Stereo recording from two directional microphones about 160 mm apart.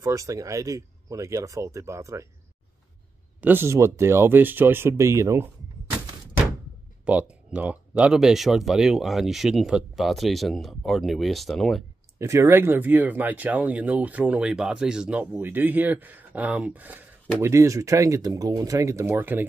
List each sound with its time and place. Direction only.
0.0 s speech: 20° right (ahead or behind)
3.3 s speech: 10° right (ahead or behind)
7.1 s speech: 10° right (ahead or behind)
12.2 s speech: 20° right (ahead or behind)